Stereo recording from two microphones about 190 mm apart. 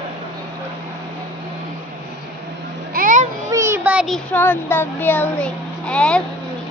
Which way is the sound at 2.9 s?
45° right (ahead or behind).